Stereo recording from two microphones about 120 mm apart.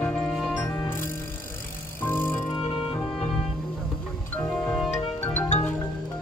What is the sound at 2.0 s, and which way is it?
Music, 20° left (ahead or behind).